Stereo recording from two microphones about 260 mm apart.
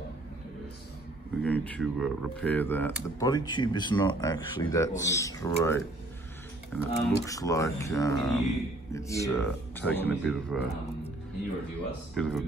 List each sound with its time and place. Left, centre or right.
1.4 s speech: centre
12.1 s speech: centre